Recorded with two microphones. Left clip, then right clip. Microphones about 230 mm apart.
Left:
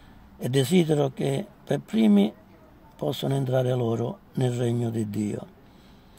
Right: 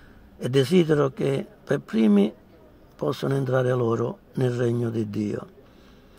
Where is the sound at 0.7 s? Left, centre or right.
Centre.